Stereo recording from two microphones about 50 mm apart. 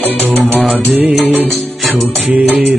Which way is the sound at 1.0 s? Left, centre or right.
Centre.